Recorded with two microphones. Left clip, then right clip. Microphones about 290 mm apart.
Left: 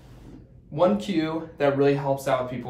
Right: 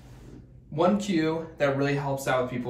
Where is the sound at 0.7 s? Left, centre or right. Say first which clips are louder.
Left 2 dB; centre.